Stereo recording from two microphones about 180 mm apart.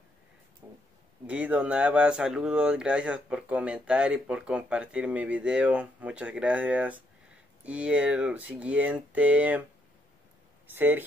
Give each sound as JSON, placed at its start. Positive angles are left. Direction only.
{"t": 0.6, "sound": "a sound", "side_deg": -15}
{"t": 1.2, "sound": "speech", "side_deg": -5}
{"t": 10.7, "sound": "speech", "side_deg": -10}